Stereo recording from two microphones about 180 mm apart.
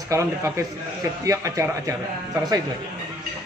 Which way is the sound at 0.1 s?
15° right (ahead or behind).